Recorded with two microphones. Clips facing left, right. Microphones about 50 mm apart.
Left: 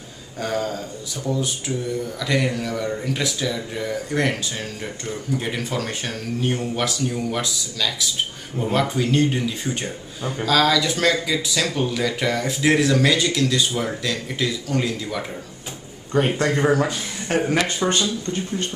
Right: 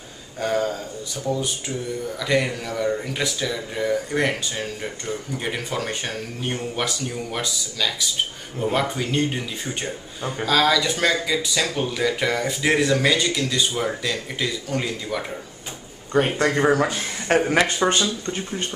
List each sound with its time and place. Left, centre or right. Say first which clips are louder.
0.4 s speech: right 2 dB; centre
2.1 s speech: right 2 dB; centre
16.3 s speech: right 1 dB; centre
17.5 s speech: right 2 dB; right
17.8 s speech: even; centre